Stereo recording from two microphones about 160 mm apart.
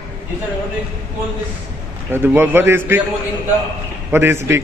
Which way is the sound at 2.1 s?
15° right (ahead or behind).